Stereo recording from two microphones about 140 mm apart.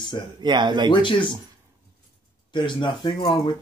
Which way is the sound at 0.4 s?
30° right (ahead or behind).